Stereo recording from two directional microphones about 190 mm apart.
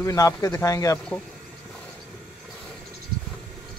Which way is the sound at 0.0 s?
15° left (ahead or behind).